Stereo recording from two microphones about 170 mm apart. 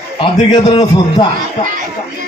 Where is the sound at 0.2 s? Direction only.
30° left (ahead or behind).